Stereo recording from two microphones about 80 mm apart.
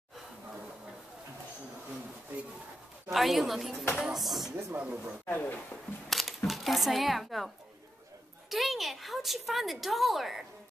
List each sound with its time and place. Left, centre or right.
3.1 s a woman's voice: centre
4.7 s speech: centre
5.2 s speech: left
6.0 s a sound: centre
8.5 s a woman's voice: centre